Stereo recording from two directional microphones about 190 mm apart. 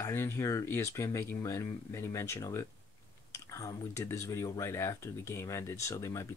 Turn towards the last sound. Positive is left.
turn(degrees=15)  # may be behind; listen again after turning